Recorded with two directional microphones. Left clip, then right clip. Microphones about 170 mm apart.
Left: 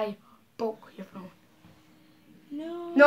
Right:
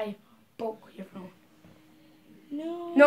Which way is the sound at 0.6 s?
30° left (ahead or behind).